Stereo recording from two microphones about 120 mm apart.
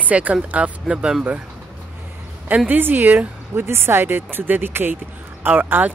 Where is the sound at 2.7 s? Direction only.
15° right (ahead or behind).